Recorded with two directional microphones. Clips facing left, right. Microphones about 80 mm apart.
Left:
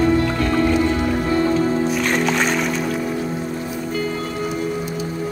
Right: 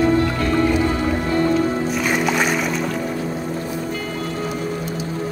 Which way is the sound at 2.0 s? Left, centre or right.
Centre.